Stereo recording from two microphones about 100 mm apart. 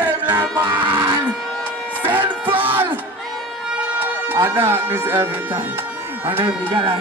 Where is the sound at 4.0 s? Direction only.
20° right (ahead or behind).